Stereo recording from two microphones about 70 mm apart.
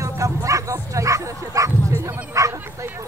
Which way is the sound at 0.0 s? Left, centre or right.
Right.